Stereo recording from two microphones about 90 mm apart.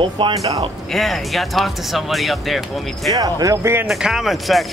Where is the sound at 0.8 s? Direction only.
Centre (ahead or behind).